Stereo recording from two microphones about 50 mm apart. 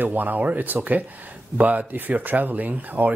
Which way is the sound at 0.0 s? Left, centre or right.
Right.